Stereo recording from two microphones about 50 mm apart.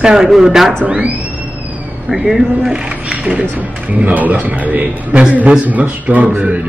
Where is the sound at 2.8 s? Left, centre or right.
Right.